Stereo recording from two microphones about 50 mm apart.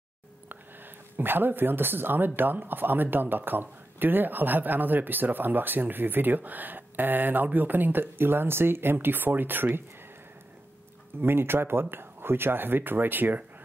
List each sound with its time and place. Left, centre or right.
0.5 s speech: right
11.1 s speech: right